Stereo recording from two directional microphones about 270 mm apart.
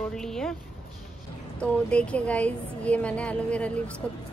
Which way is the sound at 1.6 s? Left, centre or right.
Centre.